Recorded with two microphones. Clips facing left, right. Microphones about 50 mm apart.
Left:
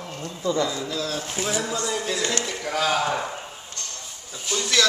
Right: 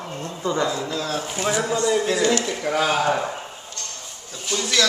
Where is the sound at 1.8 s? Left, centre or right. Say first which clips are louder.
Right 6 dB; centre.